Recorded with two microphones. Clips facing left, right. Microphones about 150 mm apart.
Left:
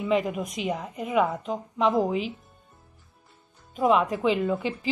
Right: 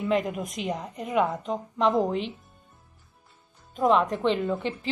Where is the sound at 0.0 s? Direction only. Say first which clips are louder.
Left 1 dB; centre (ahead or behind).